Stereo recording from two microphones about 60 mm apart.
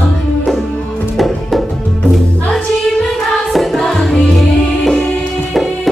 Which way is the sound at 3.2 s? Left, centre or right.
Centre.